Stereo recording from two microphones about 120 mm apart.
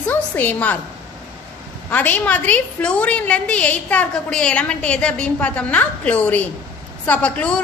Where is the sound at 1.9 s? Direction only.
15° left (ahead or behind).